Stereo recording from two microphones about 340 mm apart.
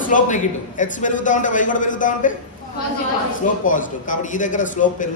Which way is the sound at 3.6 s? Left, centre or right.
Left.